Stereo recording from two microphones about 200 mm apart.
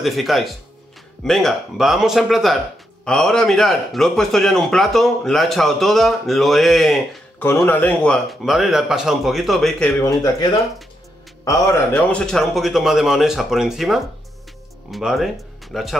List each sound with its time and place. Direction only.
0.0 s a man's voice: centre (ahead or behind)
11.4 s a man's voice: 15° left (ahead or behind); by 16.0 s centre (ahead or behind)